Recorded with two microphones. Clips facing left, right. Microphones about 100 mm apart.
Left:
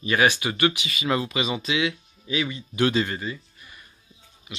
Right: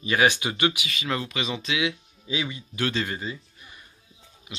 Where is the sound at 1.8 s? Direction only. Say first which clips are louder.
Left 1 dB; 15° right (ahead or behind).